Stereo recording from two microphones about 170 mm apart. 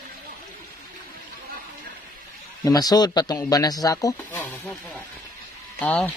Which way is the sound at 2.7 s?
20° left (ahead or behind).